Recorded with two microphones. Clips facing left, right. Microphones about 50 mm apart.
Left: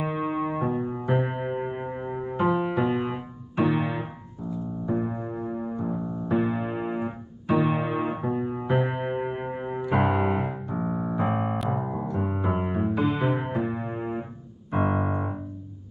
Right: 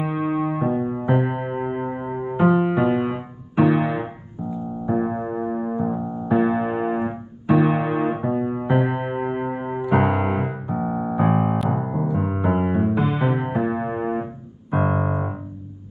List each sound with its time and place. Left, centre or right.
0.0 s music: centre
11.5 s music: centre
11.8 s music: centre
13.0 s music: centre
14.7 s piano: centre